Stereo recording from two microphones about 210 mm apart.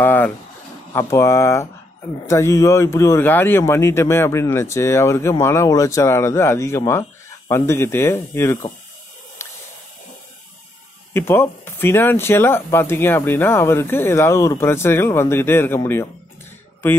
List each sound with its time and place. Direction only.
0.0 s speech: 10° left (ahead or behind)
9.4 s hiss: 15° left (ahead or behind)
11.1 s speech: 10° left (ahead or behind)